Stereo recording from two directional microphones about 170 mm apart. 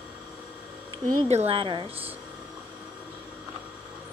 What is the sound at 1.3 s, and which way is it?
Speech, 35° right (ahead or behind).